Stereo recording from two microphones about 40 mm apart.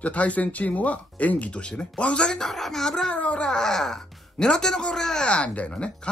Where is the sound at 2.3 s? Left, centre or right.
Centre.